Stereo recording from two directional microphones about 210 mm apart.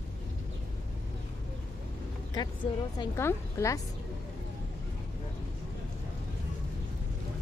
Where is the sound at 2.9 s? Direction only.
15° left (ahead or behind).